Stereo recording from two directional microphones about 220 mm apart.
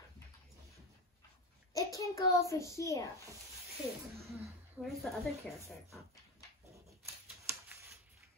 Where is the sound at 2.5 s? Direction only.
15° left (ahead or behind).